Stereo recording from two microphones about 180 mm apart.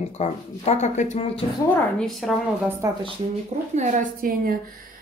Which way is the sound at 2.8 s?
15° right (ahead or behind).